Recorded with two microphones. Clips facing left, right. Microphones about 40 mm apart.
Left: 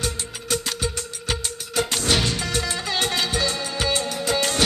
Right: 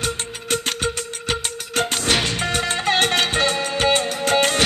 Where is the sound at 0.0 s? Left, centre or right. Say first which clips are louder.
Right 3 dB; right.